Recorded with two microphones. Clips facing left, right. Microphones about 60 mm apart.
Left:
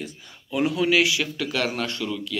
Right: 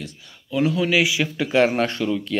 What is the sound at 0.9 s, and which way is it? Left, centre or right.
Speech, centre.